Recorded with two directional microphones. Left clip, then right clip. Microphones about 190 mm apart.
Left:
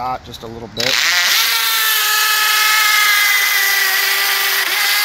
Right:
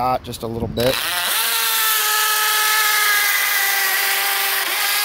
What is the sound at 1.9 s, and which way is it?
Dental drill, 15° right (ahead or behind).